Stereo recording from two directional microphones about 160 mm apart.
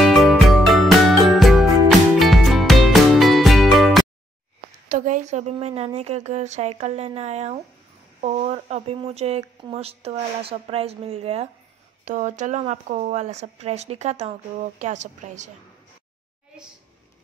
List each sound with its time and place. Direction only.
0.0 s music: centre (ahead or behind)
4.8 s a sound: 50° right (ahead or behind)
5.9 s speech: 40° right (ahead or behind)
12.0 s speech: 50° right (ahead or behind)